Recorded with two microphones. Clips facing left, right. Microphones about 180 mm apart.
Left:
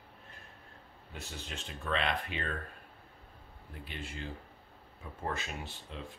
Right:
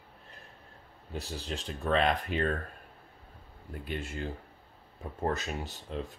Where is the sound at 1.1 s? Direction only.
35° right (ahead or behind).